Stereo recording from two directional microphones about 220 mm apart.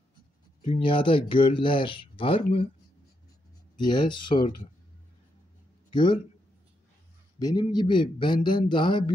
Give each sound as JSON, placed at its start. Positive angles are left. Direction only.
{"t": 0.7, "sound": "speech", "side_deg": 25}
{"t": 3.7, "sound": "speech", "side_deg": 20}
{"t": 5.9, "sound": "a sound", "side_deg": 20}
{"t": 7.3, "sound": "speech", "side_deg": 20}